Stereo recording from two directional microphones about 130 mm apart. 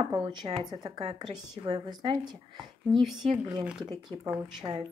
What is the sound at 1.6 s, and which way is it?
Speech, 35° right (ahead or behind).